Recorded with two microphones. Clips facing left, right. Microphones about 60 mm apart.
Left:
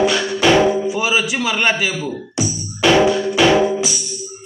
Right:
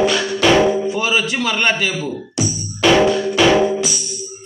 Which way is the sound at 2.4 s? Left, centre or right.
Centre.